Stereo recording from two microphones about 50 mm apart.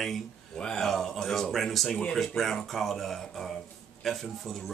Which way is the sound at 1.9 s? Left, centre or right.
Centre.